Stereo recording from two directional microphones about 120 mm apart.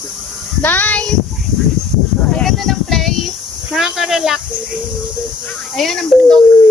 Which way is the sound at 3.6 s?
5° right (ahead or behind).